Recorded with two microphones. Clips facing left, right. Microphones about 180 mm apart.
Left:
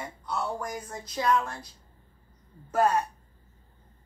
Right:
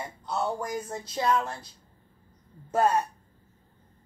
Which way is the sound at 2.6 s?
20° right (ahead or behind).